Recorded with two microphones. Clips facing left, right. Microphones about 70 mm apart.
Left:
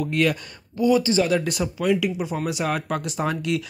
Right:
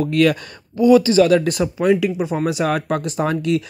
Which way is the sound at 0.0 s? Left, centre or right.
Right.